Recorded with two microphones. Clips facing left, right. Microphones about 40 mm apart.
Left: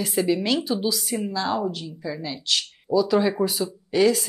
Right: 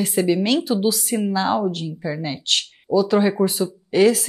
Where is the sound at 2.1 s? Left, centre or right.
Right.